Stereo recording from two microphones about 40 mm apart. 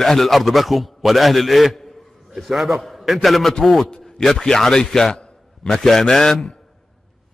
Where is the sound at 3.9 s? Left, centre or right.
Centre.